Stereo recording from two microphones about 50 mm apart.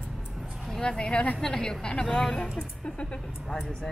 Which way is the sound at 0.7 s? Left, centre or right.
Centre.